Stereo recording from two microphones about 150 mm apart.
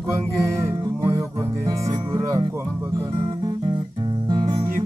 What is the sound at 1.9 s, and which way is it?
Speech, 25° right (ahead or behind).